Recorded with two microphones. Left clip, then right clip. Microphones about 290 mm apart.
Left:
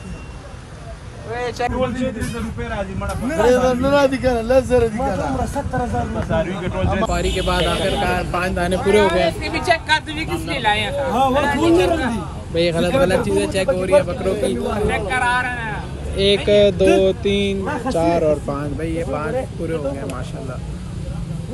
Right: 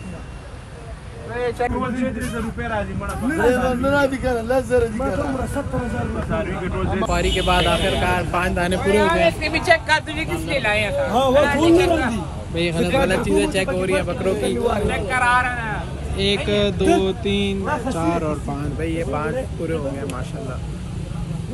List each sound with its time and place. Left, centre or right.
1.6 s speech: centre
3.4 s a man's voice: left
6.3 s speech: left
7.1 s speech: centre